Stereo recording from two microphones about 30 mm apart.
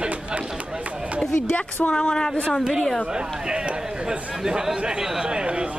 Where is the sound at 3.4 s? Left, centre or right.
Right.